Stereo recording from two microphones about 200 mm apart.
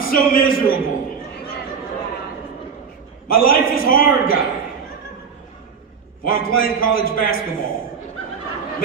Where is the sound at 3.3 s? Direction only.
45° left (ahead or behind).